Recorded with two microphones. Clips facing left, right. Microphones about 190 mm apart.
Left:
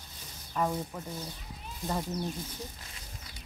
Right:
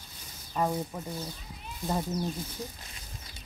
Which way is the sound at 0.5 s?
15° right (ahead or behind).